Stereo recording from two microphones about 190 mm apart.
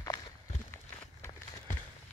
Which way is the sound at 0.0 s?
20° left (ahead or behind).